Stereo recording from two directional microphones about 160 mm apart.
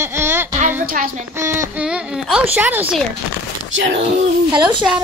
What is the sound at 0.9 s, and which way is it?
Speech, 60° right (ahead or behind).